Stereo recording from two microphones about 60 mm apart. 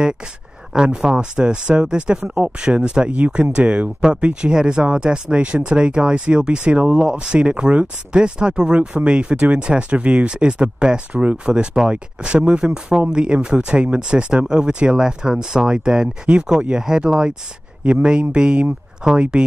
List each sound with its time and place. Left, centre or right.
0.7 s speech: centre